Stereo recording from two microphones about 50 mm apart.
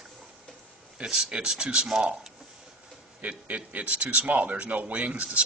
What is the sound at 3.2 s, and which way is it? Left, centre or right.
Speech, right.